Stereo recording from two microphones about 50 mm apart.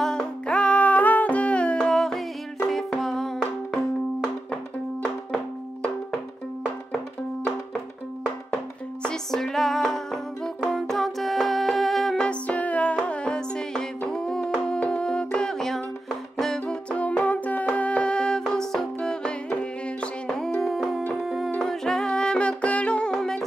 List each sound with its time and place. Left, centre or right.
0.0 s music: centre
0.5 s music: left
9.0 s music: centre
12.2 s music: left; by 16.6 s centre
16.6 s music: left
20.2 s music: centre
21.6 s music: centre